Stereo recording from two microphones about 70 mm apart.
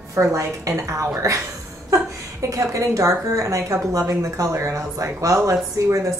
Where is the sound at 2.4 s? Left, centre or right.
Right.